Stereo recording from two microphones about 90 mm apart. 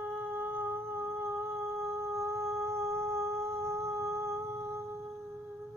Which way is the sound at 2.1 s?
30° right (ahead or behind).